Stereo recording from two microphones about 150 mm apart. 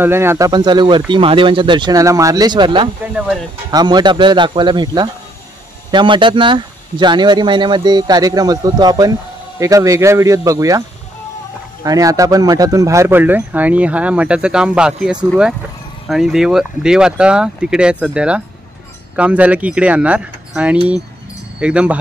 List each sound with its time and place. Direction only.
0.0 s speech: 15° right (ahead or behind)
0.5 s speech: 30° right (ahead or behind)
11.8 s speech: 25° right (ahead or behind); by 21.9 s 10° right (ahead or behind)